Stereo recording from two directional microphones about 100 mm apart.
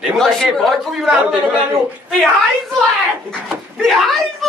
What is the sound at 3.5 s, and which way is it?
Speech, centre (ahead or behind).